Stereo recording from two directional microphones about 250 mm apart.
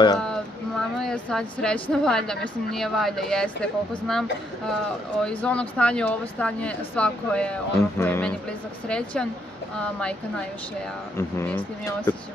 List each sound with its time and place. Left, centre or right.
0.2 s speech: centre
11.1 s speech: centre